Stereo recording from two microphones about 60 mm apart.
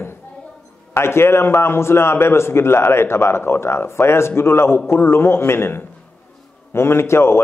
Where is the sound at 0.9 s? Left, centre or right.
Left.